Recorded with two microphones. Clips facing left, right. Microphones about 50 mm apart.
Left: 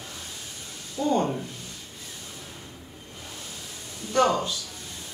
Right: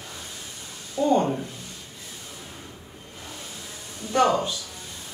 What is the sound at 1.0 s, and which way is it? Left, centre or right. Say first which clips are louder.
Speech: right 3 dB; centre.